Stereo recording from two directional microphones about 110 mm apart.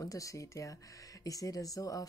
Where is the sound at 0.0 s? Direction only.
30° left (ahead or behind).